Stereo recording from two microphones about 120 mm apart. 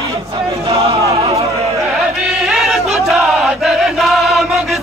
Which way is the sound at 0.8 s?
55° right (ahead or behind).